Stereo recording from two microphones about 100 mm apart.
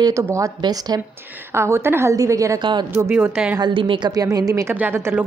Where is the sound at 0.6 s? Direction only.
45° right (ahead or behind).